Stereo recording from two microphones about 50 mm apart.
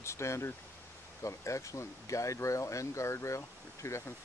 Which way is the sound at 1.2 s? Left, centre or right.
Left.